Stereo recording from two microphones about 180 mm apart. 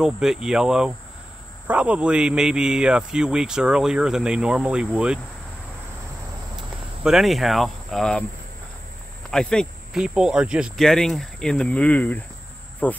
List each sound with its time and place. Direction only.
0.0 s a man's voice: 5° right (ahead or behind)
7.0 s a man's voice: 5° right (ahead or behind)
9.3 s a man's voice: 5° left (ahead or behind)
12.8 s insect: 10° left (ahead or behind)